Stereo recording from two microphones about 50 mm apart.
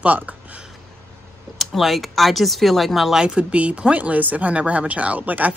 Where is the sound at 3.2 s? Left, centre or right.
Right.